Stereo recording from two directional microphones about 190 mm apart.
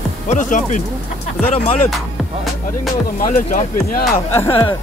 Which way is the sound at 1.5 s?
30° left (ahead or behind).